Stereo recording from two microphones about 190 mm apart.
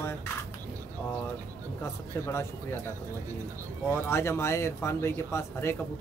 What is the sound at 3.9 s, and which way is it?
Speech, 15° left (ahead or behind).